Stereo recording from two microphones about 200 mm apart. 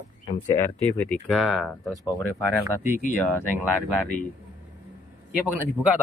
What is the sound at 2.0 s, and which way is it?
Speech, 15° left (ahead or behind).